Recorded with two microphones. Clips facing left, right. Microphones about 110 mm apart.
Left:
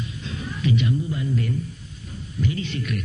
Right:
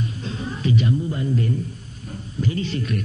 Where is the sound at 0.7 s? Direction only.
35° right (ahead or behind).